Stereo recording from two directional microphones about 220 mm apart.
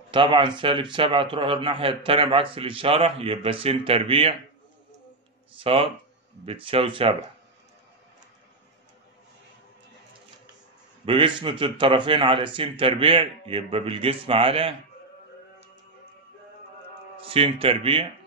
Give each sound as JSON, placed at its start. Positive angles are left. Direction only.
{"t": 0.1, "sound": "a man's voice", "side_deg": -20}
{"t": 5.6, "sound": "a man's voice", "side_deg": -25}
{"t": 11.1, "sound": "a man's voice", "side_deg": -25}
{"t": 17.3, "sound": "a man's voice", "side_deg": -25}